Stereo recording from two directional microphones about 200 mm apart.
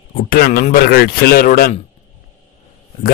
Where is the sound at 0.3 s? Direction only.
50° left (ahead or behind).